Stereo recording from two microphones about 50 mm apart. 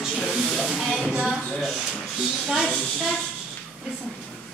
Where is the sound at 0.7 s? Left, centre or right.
Centre.